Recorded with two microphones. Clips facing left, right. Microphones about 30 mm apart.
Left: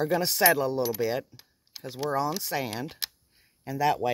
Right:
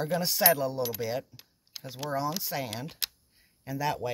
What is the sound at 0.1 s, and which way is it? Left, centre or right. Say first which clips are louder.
Speech: left 2 dB; left.